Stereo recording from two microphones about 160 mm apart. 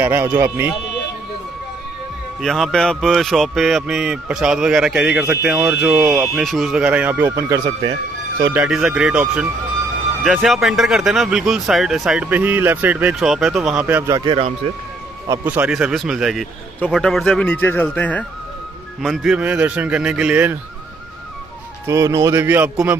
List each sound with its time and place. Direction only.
0.0 s speech: 15° right (ahead or behind)
2.4 s speech: centre (ahead or behind); by 7.9 s 25° right (ahead or behind)
8.5 s speech: 5° right (ahead or behind)
14.0 s speech: 20° right (ahead or behind)
15.4 s speech: 10° right (ahead or behind); by 18.2 s 10° left (ahead or behind)
18.9 s speech: 5° right (ahead or behind)
21.8 s speech: 20° right (ahead or behind)